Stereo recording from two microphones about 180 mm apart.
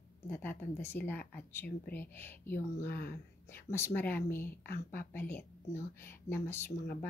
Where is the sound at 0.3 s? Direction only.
10° left (ahead or behind).